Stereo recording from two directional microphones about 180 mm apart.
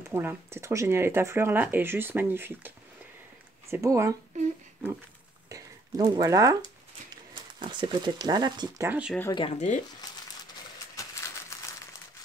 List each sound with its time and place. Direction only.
0.1 s speech: 15° right (ahead or behind)
3.7 s speech: 15° right (ahead or behind)
4.3 s speech: 40° right (ahead or behind)
5.5 s speech: 25° right (ahead or behind)
8.8 s speech: 10° right (ahead or behind)
9.3 s speech: 30° left (ahead or behind)
10.0 s crumpling: 20° left (ahead or behind)